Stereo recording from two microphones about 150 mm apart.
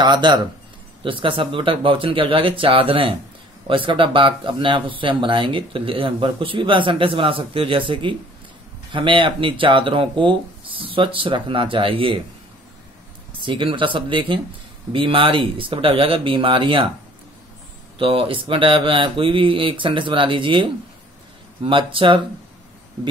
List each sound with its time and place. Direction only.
0.0 s speech: 30° right (ahead or behind)
13.5 s speech: 35° right (ahead or behind)
17.9 s speech: 35° right (ahead or behind)